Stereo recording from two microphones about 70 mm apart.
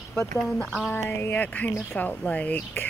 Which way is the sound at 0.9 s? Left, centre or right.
Left.